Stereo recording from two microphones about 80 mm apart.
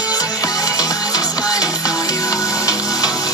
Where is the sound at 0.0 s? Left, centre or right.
Left.